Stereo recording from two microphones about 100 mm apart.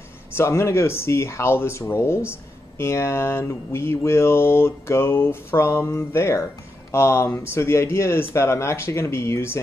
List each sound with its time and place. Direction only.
0.4 s mantra: 30° left (ahead or behind)